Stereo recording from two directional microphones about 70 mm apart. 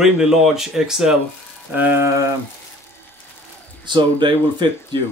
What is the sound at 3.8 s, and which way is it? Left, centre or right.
Speech, right.